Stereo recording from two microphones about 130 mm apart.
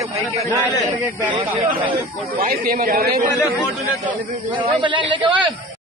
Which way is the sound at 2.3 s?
90° right.